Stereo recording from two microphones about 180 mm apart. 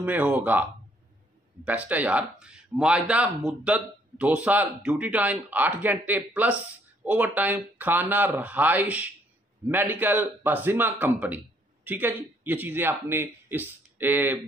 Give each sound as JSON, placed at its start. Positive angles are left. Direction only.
{"t": 0.0, "sound": "a man's voice", "side_deg": -10}